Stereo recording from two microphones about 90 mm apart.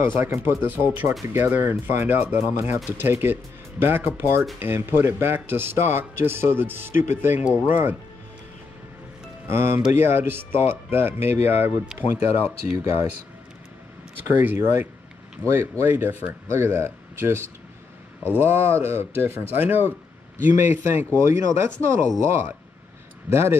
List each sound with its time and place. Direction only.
0.0 s a man's voice: 30° right (ahead or behind)
9.5 s a man's voice: 30° right (ahead or behind)
12.7 s speech: 35° right (ahead or behind)
14.4 s a man's voice: 25° right (ahead or behind)